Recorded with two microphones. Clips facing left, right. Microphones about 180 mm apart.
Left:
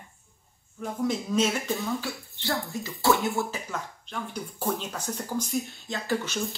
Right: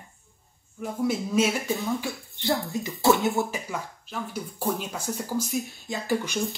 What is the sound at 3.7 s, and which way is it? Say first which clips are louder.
Speech: right 1 dB; 5° right (ahead or behind).